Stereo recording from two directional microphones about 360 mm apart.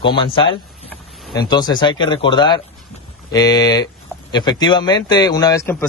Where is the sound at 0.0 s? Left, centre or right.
Centre.